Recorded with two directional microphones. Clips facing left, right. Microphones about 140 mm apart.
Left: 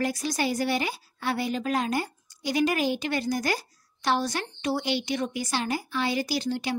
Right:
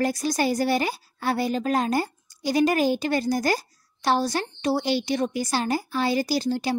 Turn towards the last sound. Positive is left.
turn(degrees=-35)  # may be behind; listen again after turning